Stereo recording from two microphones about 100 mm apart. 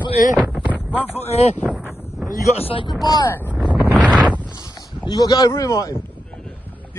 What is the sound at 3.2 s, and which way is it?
Speech, 20° left (ahead or behind).